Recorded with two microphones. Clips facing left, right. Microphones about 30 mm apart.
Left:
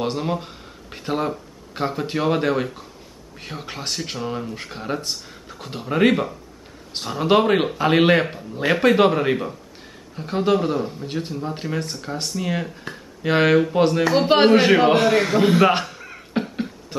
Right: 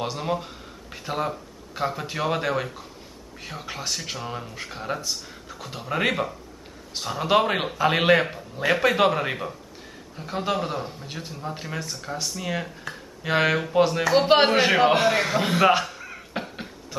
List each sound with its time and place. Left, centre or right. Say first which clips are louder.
0.2 s speech: left 2 dB; centre
1.7 s a man's voice: left 2 dB; centre
2.1 s speech: left 6 dB; centre
11.3 s speech: left 6 dB; centre
12.1 s speech: left 3 dB; centre
15.8 s beatboxing: even; centre